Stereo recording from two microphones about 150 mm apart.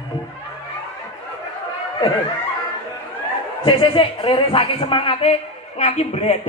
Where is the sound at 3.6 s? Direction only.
35° left (ahead or behind).